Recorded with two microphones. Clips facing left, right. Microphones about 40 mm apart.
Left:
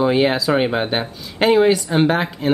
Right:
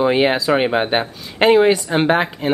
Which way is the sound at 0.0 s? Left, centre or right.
Centre.